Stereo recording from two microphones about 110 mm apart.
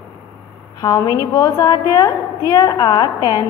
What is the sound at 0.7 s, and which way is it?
A woman's voice, 35° left (ahead or behind).